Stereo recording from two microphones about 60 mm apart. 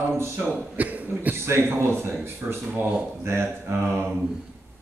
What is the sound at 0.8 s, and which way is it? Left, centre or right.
Speech, right.